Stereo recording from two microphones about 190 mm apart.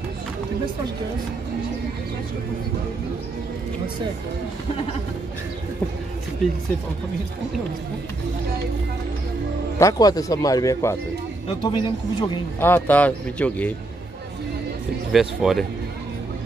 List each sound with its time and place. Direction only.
9.8 s a man's voice: 20° left (ahead or behind)
12.5 s a man's voice: 10° left (ahead or behind)
15.1 s speech: centre (ahead or behind)